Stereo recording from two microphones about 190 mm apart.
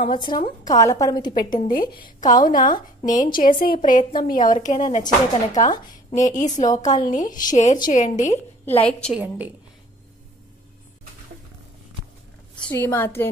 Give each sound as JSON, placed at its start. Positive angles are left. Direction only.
{"t": 0.1, "sound": "a woman's voice", "side_deg": 25}
{"t": 2.4, "sound": "a woman's voice", "side_deg": 45}
{"t": 3.1, "sound": "a woman's voice", "side_deg": 20}
{"t": 3.3, "sound": "a woman's voice", "side_deg": 45}
{"t": 5.0, "sound": "a woman's voice", "side_deg": 20}
{"t": 6.2, "sound": "a woman's voice", "side_deg": 40}
{"t": 8.6, "sound": "a woman's voice", "side_deg": 10}
{"t": 9.1, "sound": "a woman's voice", "side_deg": -10}
{"t": 12.6, "sound": "a woman's voice", "side_deg": 10}